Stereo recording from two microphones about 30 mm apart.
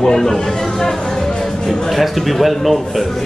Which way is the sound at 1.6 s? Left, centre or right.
Centre.